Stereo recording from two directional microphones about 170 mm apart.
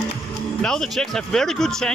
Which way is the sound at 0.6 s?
5° left (ahead or behind).